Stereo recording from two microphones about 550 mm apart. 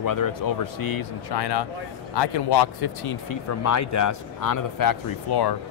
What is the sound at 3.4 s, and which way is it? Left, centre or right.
Speech, left.